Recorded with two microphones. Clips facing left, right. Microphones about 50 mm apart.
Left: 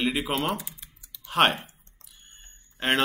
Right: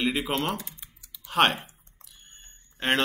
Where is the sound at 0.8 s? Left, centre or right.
Centre.